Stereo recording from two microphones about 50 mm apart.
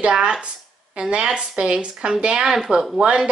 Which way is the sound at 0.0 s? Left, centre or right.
Centre.